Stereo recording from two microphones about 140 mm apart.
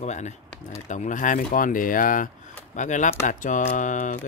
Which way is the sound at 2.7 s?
60° left (ahead or behind).